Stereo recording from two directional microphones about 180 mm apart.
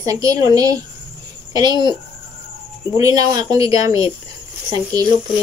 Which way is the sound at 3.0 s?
20° right (ahead or behind).